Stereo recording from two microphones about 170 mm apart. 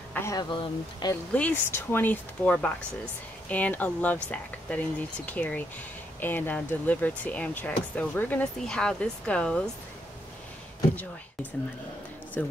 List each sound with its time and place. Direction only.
0.1 s speech: 15° left (ahead or behind)
1.3 s speech: 10° left (ahead or behind)
12.4 s speech: 10° left (ahead or behind)